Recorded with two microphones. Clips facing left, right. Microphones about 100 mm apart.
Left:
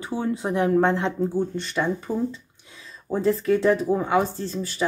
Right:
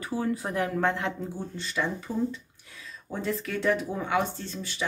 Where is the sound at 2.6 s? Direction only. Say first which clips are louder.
Left 1 dB; 25° left (ahead or behind).